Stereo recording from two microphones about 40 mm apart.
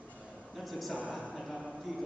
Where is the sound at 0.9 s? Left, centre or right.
Right.